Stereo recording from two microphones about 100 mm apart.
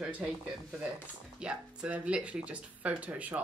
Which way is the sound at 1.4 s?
10° right (ahead or behind).